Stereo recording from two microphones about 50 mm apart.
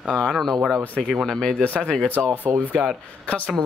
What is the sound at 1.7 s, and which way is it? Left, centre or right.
Speech, left.